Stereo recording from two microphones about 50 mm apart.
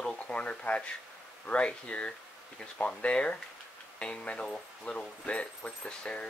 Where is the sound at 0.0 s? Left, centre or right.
Left.